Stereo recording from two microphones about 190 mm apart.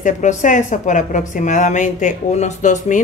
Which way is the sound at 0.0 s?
40° left (ahead or behind).